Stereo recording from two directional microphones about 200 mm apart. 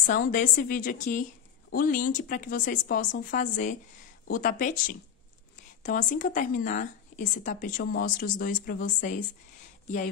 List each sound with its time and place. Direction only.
0.0 s a woman's voice: 45° left (ahead or behind)
5.8 s a woman's voice: 40° left (ahead or behind)